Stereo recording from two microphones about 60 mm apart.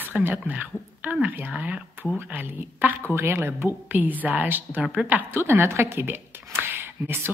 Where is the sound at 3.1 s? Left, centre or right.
Right.